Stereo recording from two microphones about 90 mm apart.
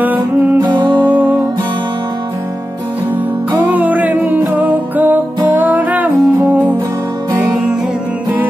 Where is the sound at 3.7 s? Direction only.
20° right (ahead or behind).